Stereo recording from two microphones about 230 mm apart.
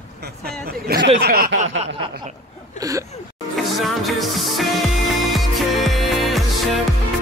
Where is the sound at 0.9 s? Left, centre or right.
Right.